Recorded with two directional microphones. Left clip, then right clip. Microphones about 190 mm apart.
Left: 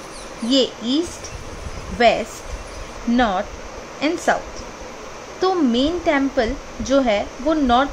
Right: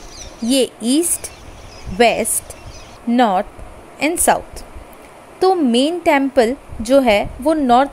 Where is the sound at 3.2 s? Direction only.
30° right (ahead or behind).